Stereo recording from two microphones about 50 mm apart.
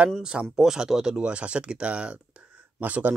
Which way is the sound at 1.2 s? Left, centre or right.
Right.